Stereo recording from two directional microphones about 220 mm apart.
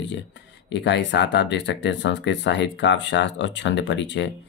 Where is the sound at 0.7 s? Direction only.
55° left (ahead or behind).